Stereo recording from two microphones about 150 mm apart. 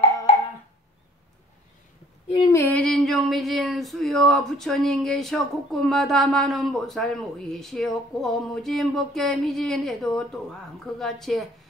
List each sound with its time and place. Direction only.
2.3 s female singing: 25° left (ahead or behind)
2.6 s speech: 5° left (ahead or behind)